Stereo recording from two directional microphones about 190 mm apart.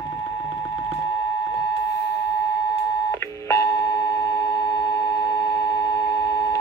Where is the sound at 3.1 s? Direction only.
15° left (ahead or behind).